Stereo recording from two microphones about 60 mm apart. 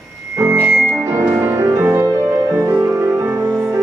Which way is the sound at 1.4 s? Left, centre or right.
Right.